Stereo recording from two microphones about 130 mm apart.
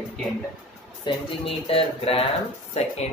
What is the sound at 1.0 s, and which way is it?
Speech, 45° left (ahead or behind).